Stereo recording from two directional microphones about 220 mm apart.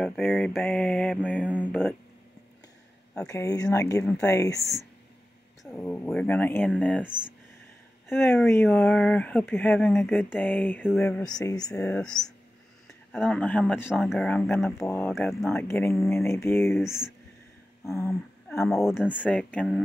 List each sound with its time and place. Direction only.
0.0 s mantra: 5° left (ahead or behind)
3.3 s speech: 15° left (ahead or behind)
4.0 s mantra: 5° left (ahead or behind)
4.3 s speech: 15° left (ahead or behind)
8.1 s speech: 10° left (ahead or behind)
11.7 s mantra: 5° left (ahead or behind)
14.8 s speech: 10° left (ahead or behind)
18.5 s speech: centre (ahead or behind)
18.9 s mantra: centre (ahead or behind)